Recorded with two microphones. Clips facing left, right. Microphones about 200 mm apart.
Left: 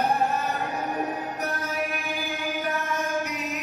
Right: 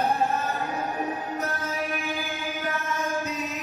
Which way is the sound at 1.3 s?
15° left (ahead or behind).